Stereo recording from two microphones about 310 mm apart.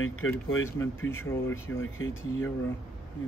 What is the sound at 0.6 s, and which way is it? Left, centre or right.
Speech, centre.